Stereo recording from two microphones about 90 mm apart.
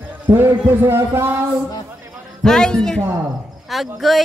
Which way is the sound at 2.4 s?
5° left (ahead or behind).